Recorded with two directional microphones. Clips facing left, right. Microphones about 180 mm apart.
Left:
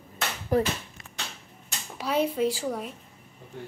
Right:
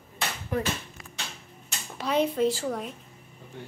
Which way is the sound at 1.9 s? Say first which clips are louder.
Right 1 dB; 5° left (ahead or behind).